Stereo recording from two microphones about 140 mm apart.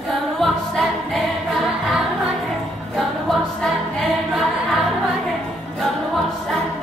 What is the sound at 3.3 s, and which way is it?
Choir, centre (ahead or behind).